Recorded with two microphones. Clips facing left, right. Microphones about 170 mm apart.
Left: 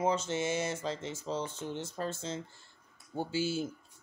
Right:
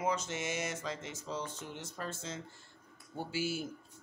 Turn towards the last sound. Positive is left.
turn(degrees=25)  # may be behind; listen again after turning